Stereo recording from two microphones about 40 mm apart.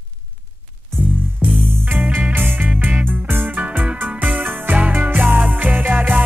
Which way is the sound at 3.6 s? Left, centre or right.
Right.